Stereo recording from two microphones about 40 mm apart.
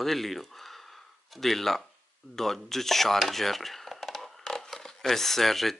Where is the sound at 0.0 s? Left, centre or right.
Centre.